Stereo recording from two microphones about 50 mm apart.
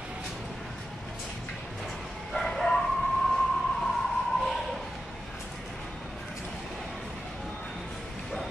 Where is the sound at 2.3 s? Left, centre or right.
Centre.